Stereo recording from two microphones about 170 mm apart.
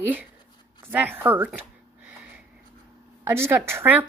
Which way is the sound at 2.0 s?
10° right (ahead or behind).